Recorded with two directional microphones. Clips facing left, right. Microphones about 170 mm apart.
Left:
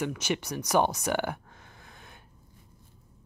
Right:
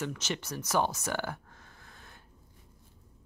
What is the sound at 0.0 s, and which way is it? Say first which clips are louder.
Speech: left 5 dB; 15° left (ahead or behind).